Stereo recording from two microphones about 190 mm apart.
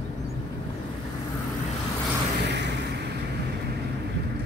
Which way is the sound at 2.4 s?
65° right (ahead or behind).